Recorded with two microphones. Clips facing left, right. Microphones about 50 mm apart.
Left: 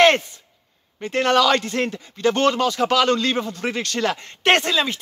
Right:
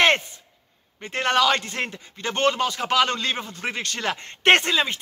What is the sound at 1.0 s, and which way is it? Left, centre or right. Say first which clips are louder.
Speech: left 3 dB; right.